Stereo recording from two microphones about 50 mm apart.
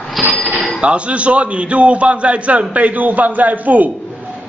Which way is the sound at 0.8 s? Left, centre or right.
Right.